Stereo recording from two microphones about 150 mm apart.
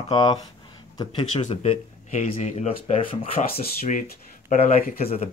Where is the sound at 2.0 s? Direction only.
55° left (ahead or behind).